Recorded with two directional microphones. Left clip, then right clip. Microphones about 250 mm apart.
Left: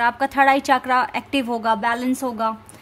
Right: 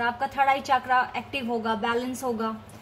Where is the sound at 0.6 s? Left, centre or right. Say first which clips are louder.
Left 5 dB; left.